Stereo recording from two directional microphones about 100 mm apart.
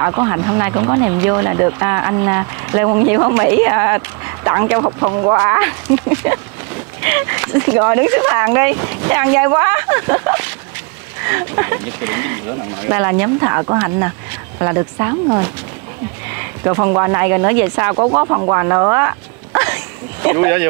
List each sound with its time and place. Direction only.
0.0 s speech: 30° right (ahead or behind)
5.4 s speech: 25° right (ahead or behind)
17.9 s speech: 40° right (ahead or behind)
19.6 s dog: 25° right (ahead or behind)